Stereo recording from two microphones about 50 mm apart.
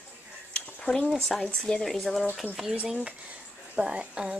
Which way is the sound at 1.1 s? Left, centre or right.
Centre.